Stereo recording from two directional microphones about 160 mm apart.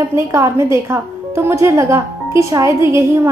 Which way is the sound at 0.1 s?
15° right (ahead or behind).